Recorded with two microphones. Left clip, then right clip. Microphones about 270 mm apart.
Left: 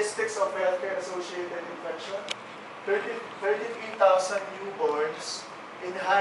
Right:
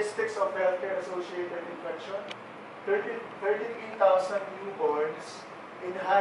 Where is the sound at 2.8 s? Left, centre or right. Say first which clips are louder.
Left 1 dB; centre.